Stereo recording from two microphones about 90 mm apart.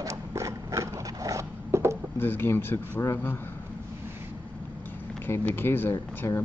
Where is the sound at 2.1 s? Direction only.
25° left (ahead or behind).